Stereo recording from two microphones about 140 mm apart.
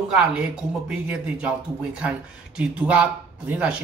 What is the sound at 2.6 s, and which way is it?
Speech, 5° right (ahead or behind).